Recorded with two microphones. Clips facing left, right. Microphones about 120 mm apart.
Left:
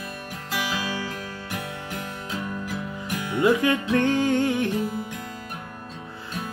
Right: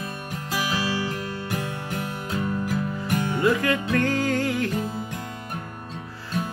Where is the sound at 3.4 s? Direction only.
20° left (ahead or behind).